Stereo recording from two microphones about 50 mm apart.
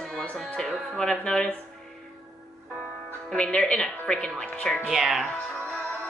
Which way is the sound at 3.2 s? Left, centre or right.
Centre.